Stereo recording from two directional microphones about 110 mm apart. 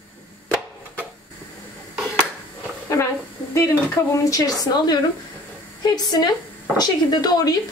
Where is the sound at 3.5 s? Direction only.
30° left (ahead or behind).